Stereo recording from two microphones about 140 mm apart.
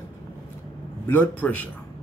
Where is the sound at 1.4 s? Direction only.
10° left (ahead or behind).